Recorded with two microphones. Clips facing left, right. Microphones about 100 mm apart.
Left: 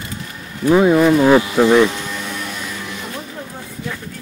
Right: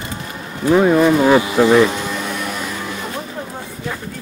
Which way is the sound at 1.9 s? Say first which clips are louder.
Right 3 dB; 25° right (ahead or behind).